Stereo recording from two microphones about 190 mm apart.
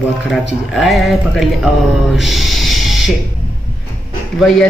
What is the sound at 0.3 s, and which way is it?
Speech, centre (ahead or behind).